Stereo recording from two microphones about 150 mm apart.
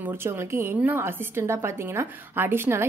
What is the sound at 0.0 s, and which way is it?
A woman's voice, 15° right (ahead or behind).